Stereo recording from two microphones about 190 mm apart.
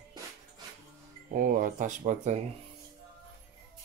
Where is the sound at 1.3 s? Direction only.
45° right (ahead or behind).